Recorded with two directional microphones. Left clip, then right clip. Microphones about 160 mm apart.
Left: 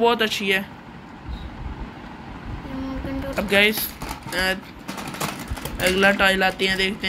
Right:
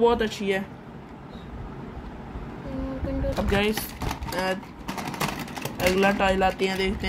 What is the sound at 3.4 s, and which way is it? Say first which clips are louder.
Speech: left 8 dB; centre (ahead or behind).